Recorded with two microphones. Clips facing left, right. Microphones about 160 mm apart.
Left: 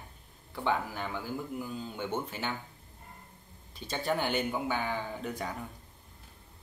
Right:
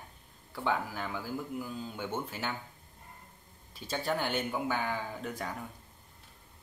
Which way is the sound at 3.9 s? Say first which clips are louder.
Left 1 dB; centre (ahead or behind).